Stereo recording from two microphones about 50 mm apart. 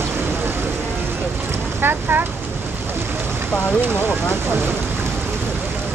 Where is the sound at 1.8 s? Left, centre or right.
Right.